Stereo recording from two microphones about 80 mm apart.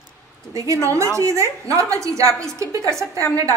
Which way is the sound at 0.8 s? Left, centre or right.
Right.